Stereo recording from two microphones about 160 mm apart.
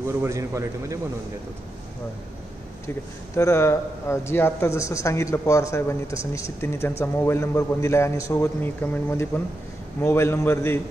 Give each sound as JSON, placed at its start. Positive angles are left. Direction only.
{"t": 0.2, "sound": "a man's voice", "side_deg": -15}
{"t": 3.3, "sound": "speech", "side_deg": 15}